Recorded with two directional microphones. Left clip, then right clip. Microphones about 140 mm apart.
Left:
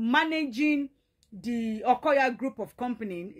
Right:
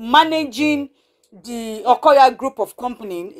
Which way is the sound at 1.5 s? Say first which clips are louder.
Right 9 dB; 15° left (ahead or behind).